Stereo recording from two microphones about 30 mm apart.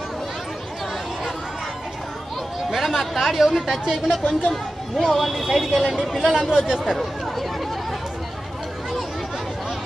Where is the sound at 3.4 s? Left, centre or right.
Centre.